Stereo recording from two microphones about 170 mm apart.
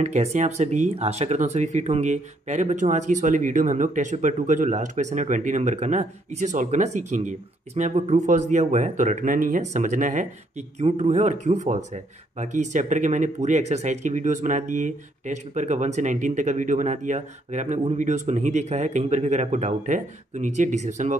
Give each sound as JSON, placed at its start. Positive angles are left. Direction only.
{"t": 0.0, "sound": "speech", "side_deg": -40}